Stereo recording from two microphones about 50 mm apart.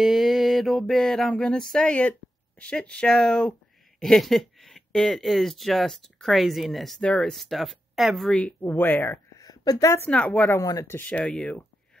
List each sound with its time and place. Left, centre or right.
0.0 s a sound: centre
1.8 s speech: left
4.0 s a sound: centre
5.0 s speech: centre
8.6 s speech: left
9.3 s a sound: left
10.0 s speech: left
10.5 s speech: left
11.1 s speech: left